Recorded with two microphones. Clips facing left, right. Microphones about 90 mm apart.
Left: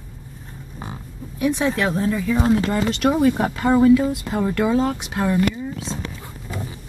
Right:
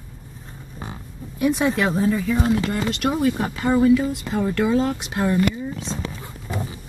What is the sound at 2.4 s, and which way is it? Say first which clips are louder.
Speech: left 3 dB; 25° left (ahead or behind).